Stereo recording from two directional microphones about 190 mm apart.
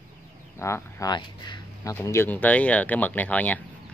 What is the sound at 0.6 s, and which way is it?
Speech, 15° left (ahead or behind).